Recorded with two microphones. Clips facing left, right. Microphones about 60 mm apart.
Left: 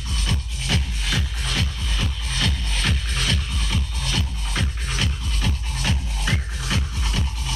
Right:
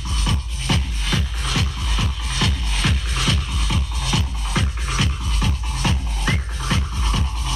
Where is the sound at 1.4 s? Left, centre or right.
Centre.